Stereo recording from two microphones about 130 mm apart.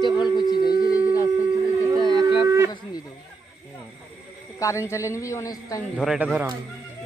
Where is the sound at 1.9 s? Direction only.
40° left (ahead or behind).